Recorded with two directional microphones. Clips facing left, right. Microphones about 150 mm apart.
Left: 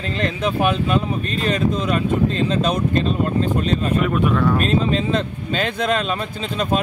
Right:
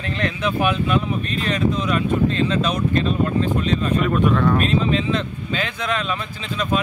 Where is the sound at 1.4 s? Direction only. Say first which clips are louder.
Left 2 dB; 35° left (ahead or behind).